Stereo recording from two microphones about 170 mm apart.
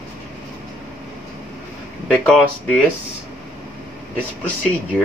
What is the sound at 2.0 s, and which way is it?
Speech, 5° left (ahead or behind).